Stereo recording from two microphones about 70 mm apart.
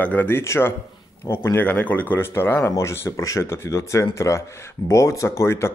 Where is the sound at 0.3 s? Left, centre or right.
Left.